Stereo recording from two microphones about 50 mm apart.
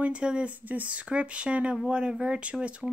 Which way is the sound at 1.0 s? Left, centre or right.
Right.